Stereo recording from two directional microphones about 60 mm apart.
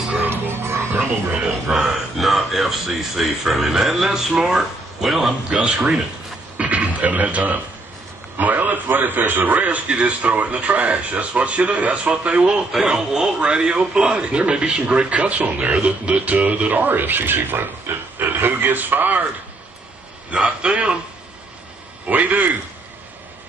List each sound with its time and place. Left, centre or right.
0.3 s music: right
1.7 s speech: centre
6.6 s a man's voice: right
20.3 s a man's voice: centre
22.0 s a man's voice: right